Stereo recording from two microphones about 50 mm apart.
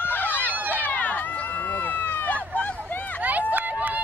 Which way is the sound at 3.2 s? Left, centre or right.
Right.